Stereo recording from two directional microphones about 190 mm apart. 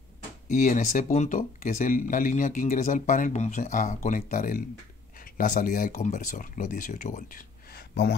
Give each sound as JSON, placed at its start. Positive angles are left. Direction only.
{"t": 0.5, "sound": "speech", "side_deg": 45}